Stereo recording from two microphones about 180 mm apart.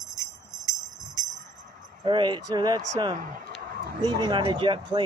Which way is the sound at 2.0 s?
25° right (ahead or behind).